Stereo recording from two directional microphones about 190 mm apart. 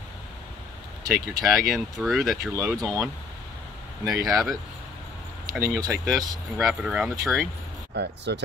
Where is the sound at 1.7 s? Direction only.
Centre (ahead or behind).